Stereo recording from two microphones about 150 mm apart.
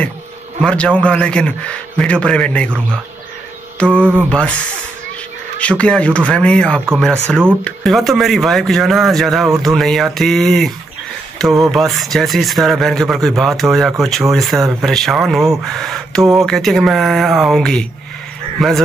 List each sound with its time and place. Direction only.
0.6 s a man's voice: 5° left (ahead or behind)
4.0 s mantra: 10° right (ahead or behind)
4.3 s a man's voice: 5° left (ahead or behind)
5.6 s a man's voice: 10° left (ahead or behind)